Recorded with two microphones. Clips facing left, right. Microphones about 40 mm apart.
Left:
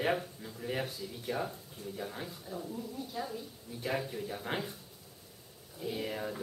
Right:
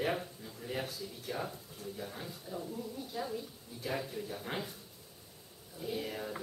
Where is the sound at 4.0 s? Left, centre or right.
Centre.